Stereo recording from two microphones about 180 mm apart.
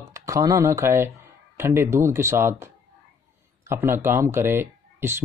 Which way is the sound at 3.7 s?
15° right (ahead or behind).